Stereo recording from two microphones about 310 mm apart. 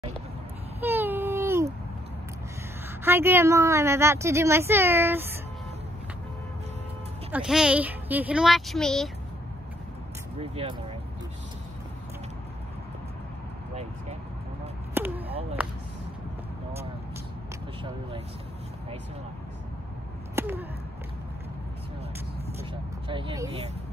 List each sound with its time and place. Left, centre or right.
0.7 s baby cry: centre
3.0 s a woman's voice: centre
7.2 s speech: centre
10.4 s speech: centre
15.0 s a sound: centre
20.3 s a sound: centre
22.6 s vehicle: centre